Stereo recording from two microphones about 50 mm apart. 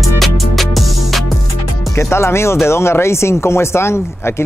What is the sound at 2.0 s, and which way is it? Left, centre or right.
Speech, left.